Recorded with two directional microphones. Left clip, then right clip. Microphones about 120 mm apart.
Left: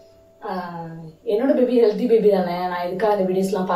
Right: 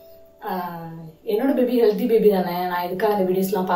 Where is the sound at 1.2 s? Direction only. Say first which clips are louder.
Left 2 dB; 15° right (ahead or behind).